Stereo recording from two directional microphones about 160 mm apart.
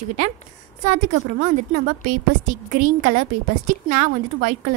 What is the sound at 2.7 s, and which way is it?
A woman's voice, 55° right (ahead or behind).